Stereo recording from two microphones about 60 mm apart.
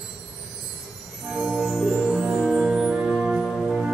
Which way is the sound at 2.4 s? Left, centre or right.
Centre.